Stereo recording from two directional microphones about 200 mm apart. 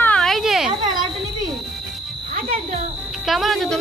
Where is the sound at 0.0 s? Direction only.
5° left (ahead or behind).